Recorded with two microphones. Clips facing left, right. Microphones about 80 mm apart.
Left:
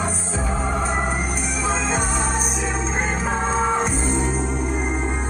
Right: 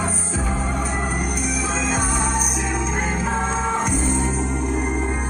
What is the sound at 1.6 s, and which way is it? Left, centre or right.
Music, left.